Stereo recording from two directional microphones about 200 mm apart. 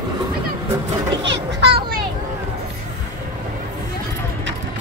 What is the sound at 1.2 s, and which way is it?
Children playing, 60° right (ahead or behind).